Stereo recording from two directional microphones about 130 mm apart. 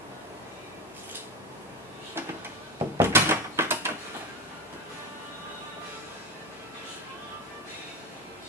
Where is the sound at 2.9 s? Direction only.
20° right (ahead or behind).